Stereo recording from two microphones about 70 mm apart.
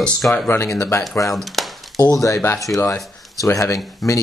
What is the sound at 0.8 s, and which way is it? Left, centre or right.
Speech, left.